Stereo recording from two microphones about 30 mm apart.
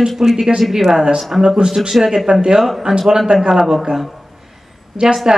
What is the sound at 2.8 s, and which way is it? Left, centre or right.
Speech, right.